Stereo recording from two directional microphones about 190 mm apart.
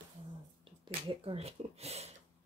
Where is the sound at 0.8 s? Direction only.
30° right (ahead or behind).